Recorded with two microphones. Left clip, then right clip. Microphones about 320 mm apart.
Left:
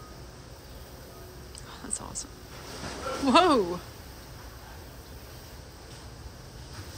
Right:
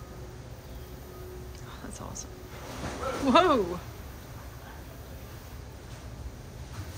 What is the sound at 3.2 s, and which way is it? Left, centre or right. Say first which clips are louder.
Speech: left 1 dB; centre.